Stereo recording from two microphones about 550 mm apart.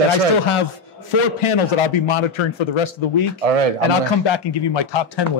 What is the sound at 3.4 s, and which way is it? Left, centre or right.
Speech, right.